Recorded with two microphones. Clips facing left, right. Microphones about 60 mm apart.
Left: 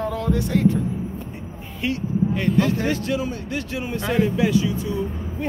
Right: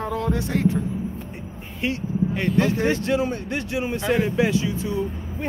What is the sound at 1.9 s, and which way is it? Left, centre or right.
Speech, right.